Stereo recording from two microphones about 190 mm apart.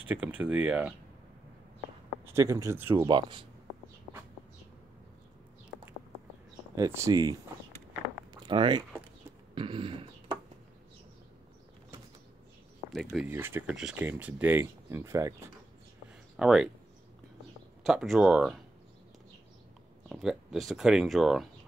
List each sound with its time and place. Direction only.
0.0 s speech: 10° right (ahead or behind)
2.2 s speech: 15° right (ahead or behind)
3.1 s speech: 25° right (ahead or behind)
6.7 s speech: 15° right (ahead or behind)
8.5 s speech: 25° right (ahead or behind)
9.6 s a sound: 25° right (ahead or behind)
12.9 s speech: centre (ahead or behind)
13.3 s speech: 10° right (ahead or behind)
16.3 s speech: 5° right (ahead or behind)
17.8 s speech: centre (ahead or behind)
20.1 s speech: centre (ahead or behind)